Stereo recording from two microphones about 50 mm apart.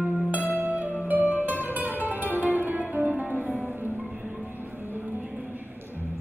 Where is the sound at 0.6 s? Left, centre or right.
Right.